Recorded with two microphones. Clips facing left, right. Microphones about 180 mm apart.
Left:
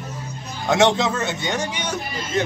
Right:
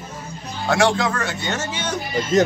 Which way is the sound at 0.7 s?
20° left (ahead or behind).